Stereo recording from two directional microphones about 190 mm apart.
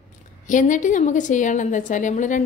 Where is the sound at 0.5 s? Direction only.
40° left (ahead or behind).